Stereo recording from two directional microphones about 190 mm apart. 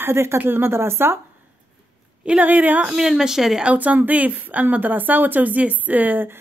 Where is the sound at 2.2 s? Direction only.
5° right (ahead or behind).